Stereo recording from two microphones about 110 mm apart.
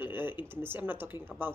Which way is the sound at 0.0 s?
20° right (ahead or behind).